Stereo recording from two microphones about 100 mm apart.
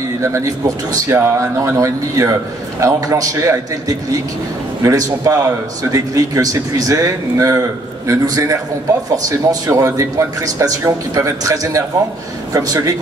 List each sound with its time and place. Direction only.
0.2 s speech: 30° right (ahead or behind)
4.8 s speech: 35° right (ahead or behind)